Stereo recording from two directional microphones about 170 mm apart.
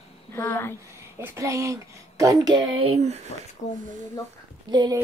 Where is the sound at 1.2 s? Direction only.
15° right (ahead or behind); by 3.2 s 40° right (ahead or behind).